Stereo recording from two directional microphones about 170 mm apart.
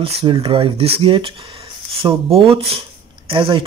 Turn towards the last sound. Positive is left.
turn(degrees=-30)  # may be behind; listen again after turning